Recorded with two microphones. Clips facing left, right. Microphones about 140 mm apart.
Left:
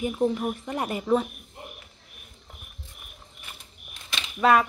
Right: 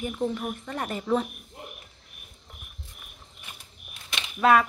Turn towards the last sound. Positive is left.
turn(degrees=0)  # may be behind; listen again after turning